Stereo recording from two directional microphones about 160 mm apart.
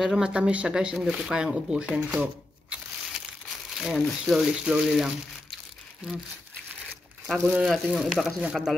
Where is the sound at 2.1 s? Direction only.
5° right (ahead or behind).